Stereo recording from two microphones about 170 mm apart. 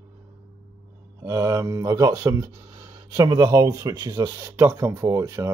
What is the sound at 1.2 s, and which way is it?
Speech, 20° right (ahead or behind).